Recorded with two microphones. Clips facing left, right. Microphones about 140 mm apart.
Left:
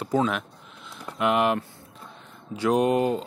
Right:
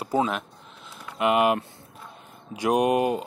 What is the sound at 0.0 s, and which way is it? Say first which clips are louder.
A man's voice: left 1 dB; 10° right (ahead or behind).